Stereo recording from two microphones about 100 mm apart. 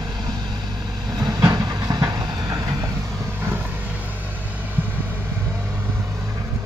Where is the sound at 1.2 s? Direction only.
35° right (ahead or behind).